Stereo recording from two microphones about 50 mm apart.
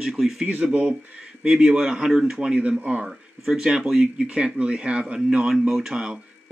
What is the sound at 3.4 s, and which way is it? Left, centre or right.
Speech, centre.